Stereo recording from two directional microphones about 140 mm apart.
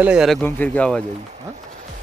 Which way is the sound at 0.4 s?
10° left (ahead or behind).